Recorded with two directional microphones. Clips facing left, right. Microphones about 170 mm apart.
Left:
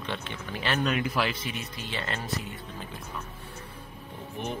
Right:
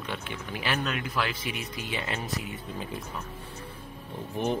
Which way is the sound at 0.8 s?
5° left (ahead or behind).